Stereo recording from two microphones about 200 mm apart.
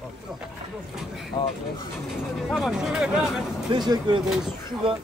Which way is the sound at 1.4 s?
25° left (ahead or behind).